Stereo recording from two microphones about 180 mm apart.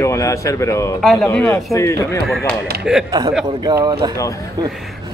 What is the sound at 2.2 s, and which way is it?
Speech, centre (ahead or behind).